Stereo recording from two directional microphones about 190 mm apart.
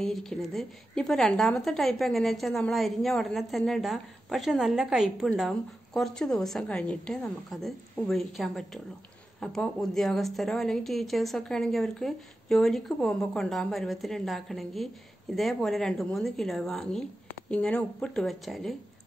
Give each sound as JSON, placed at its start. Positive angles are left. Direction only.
{"t": 0.0, "sound": "a woman's voice", "side_deg": 5}